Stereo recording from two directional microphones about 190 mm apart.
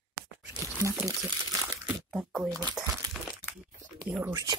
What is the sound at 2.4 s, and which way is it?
Speech, 20° right (ahead or behind).